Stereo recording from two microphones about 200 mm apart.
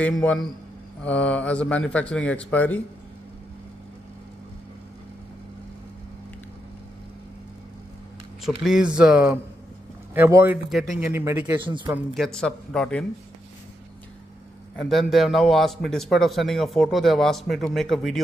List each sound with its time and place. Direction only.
0.0 s speech: 5° left (ahead or behind)
8.5 s a man's voice: centre (ahead or behind)
11.6 s speech: 25° right (ahead or behind)
12.1 s a man's voice: centre (ahead or behind)
14.8 s a man's voice: centre (ahead or behind)